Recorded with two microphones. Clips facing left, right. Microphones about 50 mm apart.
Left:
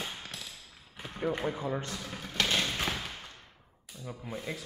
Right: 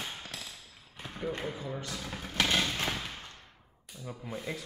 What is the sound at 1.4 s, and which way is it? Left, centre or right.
Speech, left.